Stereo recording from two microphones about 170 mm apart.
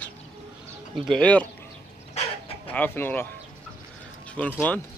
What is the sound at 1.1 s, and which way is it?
Speech, 5° left (ahead or behind).